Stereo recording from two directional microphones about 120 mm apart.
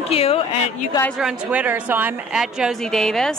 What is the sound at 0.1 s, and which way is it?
Speech, 55° left (ahead or behind).